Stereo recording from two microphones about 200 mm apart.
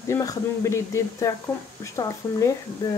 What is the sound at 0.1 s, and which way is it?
Speech, 15° left (ahead or behind).